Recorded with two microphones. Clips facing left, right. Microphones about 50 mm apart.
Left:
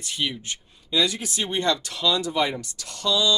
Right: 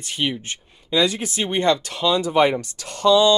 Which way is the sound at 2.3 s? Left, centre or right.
Right.